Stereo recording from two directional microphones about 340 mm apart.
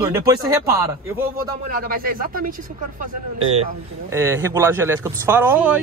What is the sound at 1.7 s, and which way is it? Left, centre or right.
Speech, right.